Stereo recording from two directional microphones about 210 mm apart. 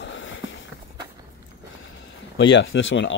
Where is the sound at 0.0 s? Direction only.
60° left (ahead or behind).